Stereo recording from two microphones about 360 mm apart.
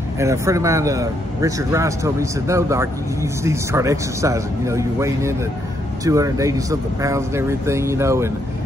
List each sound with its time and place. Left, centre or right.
0.2 s a man's voice: centre